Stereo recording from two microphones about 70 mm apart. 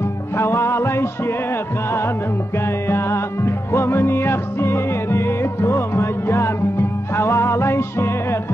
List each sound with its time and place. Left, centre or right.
0.4 s music: left
2.9 s music: left